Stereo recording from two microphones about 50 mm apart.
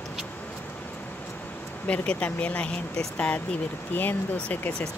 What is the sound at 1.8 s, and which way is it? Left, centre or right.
Speech, left.